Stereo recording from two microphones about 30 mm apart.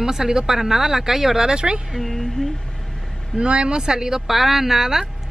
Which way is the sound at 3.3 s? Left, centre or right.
Right.